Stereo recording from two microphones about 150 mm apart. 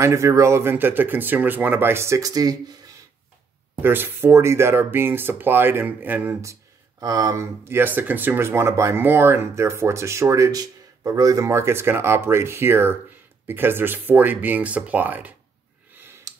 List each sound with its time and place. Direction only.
0.0 s speech: 20° right (ahead or behind)
3.8 s speech: 15° right (ahead or behind)
16.3 s a sound: 20° right (ahead or behind)